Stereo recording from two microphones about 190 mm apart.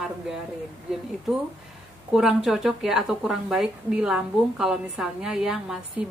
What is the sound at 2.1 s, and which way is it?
A woman's voice, centre (ahead or behind).